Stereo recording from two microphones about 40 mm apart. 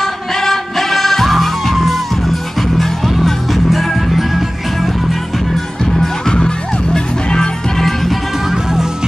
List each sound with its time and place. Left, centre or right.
0.0 s music: centre
6.2 s music: centre
7.8 s music: centre